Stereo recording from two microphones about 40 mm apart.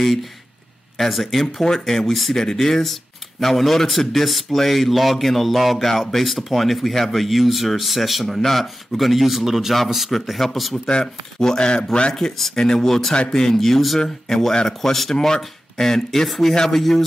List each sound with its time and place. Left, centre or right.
0.9 s speech: centre
10.9 s speech: centre
12.1 s speech: centre